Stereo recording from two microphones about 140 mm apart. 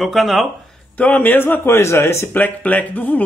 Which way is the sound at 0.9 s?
10° left (ahead or behind).